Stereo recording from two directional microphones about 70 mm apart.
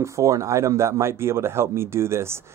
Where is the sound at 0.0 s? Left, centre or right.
Right.